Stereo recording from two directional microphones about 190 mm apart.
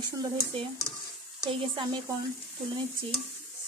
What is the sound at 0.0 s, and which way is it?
Speech, 25° right (ahead or behind).